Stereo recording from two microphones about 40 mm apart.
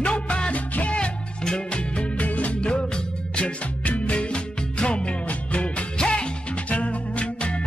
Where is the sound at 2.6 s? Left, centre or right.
Left.